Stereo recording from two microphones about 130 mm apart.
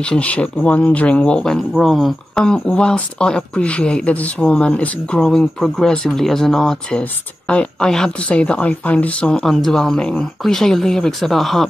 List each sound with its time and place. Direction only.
0.0 s speech: 10° left (ahead or behind)